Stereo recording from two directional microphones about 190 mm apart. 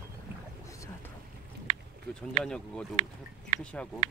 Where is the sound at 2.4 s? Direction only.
5° left (ahead or behind).